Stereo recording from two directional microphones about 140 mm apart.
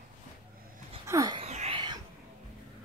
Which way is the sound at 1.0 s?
20° right (ahead or behind).